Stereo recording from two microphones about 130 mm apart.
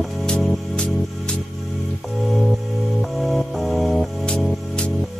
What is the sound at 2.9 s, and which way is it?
Music, centre (ahead or behind).